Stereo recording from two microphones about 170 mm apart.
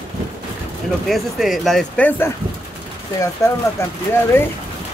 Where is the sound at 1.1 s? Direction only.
Centre (ahead or behind).